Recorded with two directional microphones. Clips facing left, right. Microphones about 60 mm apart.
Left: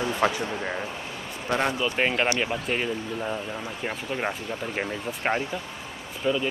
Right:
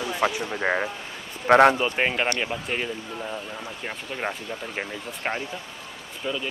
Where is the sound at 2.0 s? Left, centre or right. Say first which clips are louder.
Even; centre.